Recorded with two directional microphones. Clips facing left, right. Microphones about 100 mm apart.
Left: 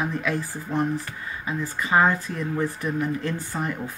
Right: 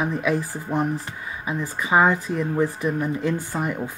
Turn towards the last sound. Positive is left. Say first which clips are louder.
# right 3 dB
turn(degrees=-15)  # may be behind; listen again after turning